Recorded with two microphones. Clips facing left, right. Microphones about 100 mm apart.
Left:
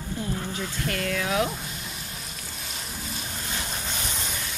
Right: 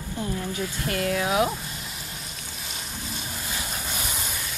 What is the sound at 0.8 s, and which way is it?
Speech, 30° right (ahead or behind).